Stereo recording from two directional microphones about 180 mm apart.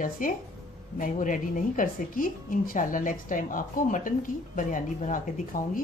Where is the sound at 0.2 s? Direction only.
50° left (ahead or behind).